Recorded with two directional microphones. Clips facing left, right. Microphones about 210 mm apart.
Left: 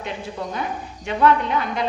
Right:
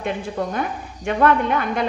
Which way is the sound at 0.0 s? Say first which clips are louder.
Right 5 dB; 55° right (ahead or behind).